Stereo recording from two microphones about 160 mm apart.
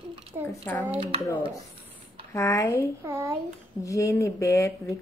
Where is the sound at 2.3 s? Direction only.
20° left (ahead or behind).